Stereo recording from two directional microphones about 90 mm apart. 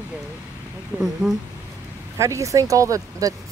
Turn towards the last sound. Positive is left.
turn(degrees=-40)  # may be behind; listen again after turning